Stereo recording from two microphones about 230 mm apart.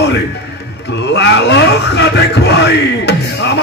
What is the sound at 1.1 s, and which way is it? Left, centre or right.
Speech, left.